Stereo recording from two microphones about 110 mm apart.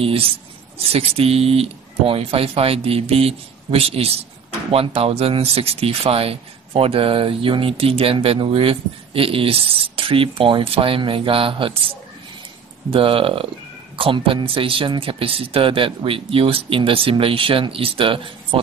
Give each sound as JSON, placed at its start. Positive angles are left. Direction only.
{"t": 0.0, "sound": "speech", "side_deg": -60}
{"t": 12.9, "sound": "speech", "side_deg": -55}